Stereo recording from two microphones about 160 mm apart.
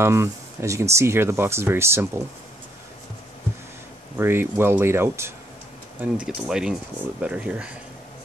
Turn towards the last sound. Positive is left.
turn(degrees=-5)  # may be behind; listen again after turning